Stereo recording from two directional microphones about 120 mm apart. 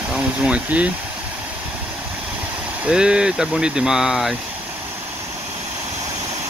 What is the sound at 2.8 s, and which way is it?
Speech, 10° right (ahead or behind).